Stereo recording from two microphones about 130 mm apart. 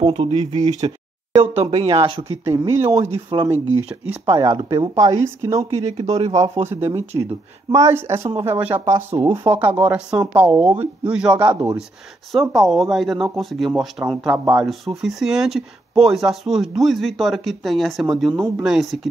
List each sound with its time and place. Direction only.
0.0 s speech: 40° right (ahead or behind)
2.0 s speech: 45° right (ahead or behind)
2.4 s speech: 25° right (ahead or behind)
3.3 s speech: 40° right (ahead or behind)
3.6 s speech: 20° right (ahead or behind)
5.9 s speech: 55° right (ahead or behind)
6.7 s speech: 20° right (ahead or behind)
12.3 s speech: centre (ahead or behind)